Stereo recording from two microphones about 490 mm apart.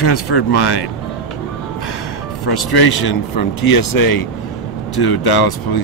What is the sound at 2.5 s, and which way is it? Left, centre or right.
A man's voice, left.